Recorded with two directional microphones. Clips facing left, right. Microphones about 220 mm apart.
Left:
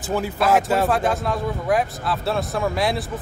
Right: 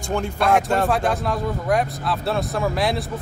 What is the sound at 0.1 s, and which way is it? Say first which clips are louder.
Speech: even; 5° left (ahead or behind).